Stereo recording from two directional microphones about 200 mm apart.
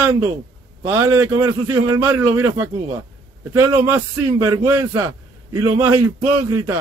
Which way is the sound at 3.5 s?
10° right (ahead or behind).